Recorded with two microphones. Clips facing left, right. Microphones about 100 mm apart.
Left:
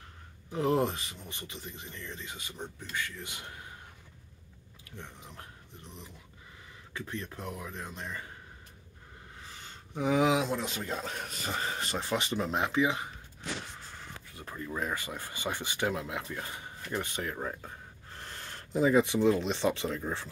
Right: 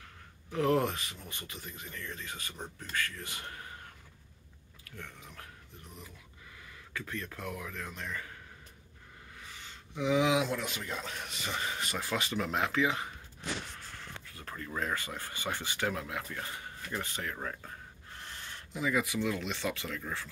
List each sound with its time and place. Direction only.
0.5 s speech: 25° left (ahead or behind)
4.9 s speech: 20° left (ahead or behind)
9.4 s speech: 40° left (ahead or behind); by 17.6 s 20° left (ahead or behind)
18.2 s speech: 40° left (ahead or behind)